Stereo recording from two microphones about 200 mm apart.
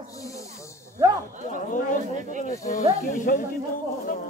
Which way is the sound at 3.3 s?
45° left (ahead or behind).